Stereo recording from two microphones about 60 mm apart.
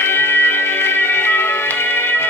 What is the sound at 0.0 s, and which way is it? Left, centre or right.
Music, left.